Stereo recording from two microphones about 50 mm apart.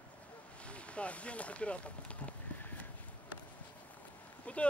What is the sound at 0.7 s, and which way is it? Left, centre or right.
Speech, left.